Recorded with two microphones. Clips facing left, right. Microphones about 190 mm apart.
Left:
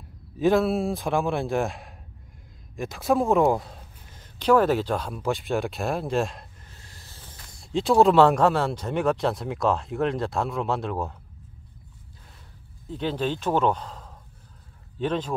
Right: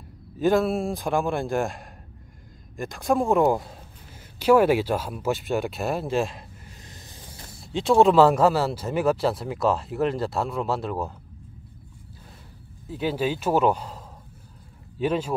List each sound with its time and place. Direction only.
0.4 s speech: centre (ahead or behind)
6.9 s a sound: 20° right (ahead or behind)
7.5 s speech: centre (ahead or behind)
12.8 s speech: 10° right (ahead or behind)